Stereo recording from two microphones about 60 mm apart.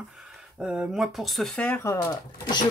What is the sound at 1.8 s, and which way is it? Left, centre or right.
Speech, left.